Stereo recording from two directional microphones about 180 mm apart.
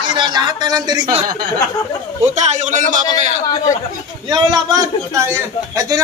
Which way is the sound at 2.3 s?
40° right (ahead or behind).